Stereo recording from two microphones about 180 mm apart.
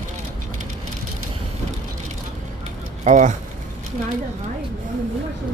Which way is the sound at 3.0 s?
40° right (ahead or behind).